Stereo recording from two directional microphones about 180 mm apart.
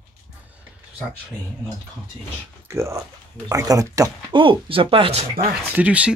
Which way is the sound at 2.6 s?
15° right (ahead or behind).